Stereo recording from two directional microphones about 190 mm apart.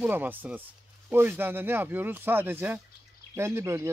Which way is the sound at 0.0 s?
10° right (ahead or behind).